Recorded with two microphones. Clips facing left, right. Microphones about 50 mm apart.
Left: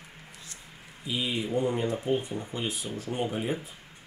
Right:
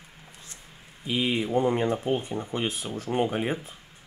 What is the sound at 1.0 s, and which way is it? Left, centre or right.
Speech, right.